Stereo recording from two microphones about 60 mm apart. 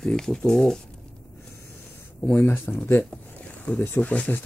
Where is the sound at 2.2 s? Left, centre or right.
Left.